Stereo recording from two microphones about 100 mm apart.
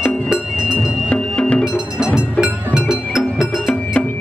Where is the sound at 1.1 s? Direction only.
10° left (ahead or behind).